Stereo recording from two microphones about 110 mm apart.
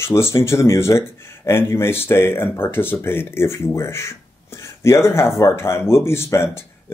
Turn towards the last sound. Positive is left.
turn(degrees=25)  # may be behind; listen again after turning